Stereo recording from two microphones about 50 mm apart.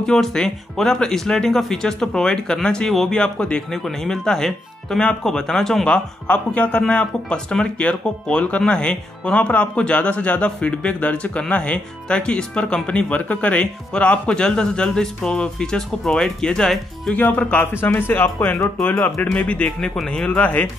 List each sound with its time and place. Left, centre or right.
0.0 s speech: centre
5.9 s speech: left
17.1 s speech: left
18.4 s speech: centre
19.3 s speech: left